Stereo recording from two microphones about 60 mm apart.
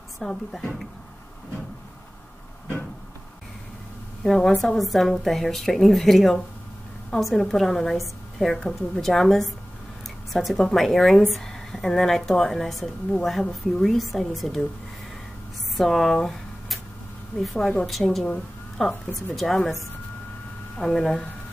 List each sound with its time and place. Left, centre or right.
0.2 s speech: centre
4.2 s a woman's voice: centre
15.7 s a sound: centre
17.4 s a woman's voice: centre
20.7 s speech: centre